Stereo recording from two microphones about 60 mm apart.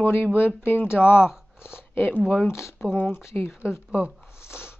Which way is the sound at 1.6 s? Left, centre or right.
Left.